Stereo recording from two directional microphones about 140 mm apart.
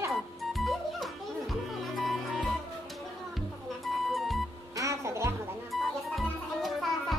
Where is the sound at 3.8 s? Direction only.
Centre (ahead or behind).